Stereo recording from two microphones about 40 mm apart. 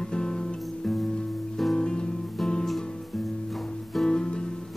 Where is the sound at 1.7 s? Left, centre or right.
Left.